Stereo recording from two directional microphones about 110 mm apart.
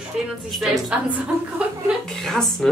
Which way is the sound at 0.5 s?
Centre (ahead or behind).